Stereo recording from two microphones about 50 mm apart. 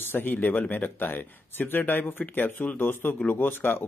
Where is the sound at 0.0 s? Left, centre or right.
Left.